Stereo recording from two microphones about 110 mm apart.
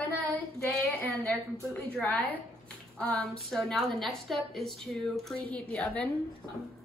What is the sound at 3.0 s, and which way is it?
A woman's voice, 10° left (ahead or behind).